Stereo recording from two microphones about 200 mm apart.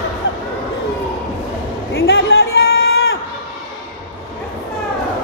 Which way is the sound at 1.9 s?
75° left (ahead or behind).